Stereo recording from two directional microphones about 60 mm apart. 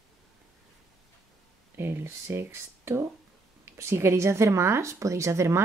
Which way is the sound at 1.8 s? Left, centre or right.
Right.